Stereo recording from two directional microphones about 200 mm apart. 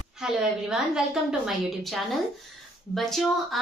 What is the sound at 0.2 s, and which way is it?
A woman's voice, 5° right (ahead or behind).